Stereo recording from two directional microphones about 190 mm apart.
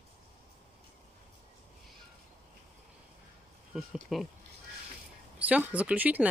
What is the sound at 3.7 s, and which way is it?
Speech, 5° right (ahead or behind).